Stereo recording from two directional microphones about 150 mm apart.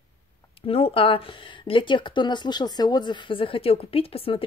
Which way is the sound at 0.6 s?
40° left (ahead or behind).